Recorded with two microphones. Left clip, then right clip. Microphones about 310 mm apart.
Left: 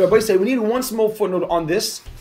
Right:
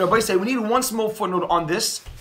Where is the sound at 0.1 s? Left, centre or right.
Right.